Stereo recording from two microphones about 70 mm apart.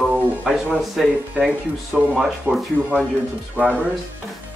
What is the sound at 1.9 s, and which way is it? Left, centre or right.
Speech, centre.